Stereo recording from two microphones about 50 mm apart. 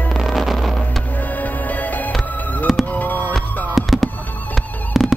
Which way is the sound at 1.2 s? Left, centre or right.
Left.